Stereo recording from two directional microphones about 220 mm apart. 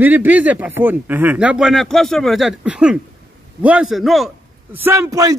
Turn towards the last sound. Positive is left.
turn(degrees=-15)  # may be behind; listen again after turning